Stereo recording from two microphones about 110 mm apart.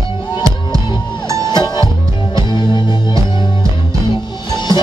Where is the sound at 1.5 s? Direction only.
40° left (ahead or behind).